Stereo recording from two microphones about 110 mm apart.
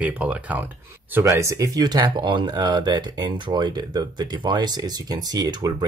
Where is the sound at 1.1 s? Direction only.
25° right (ahead or behind).